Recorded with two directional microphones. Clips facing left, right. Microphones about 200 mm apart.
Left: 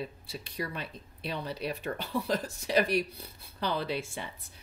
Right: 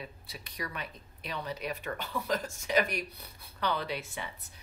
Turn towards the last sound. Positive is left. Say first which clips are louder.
# left 2 dB
turn(degrees=30)  # may be behind; listen again after turning